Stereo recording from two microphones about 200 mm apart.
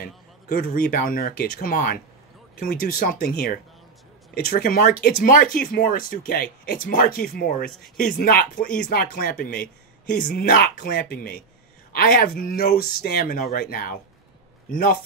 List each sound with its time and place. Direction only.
0.0 s speech: 45° left (ahead or behind)